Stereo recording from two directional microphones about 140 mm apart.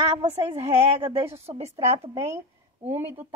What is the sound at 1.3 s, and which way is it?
A woman's voice, 45° right (ahead or behind).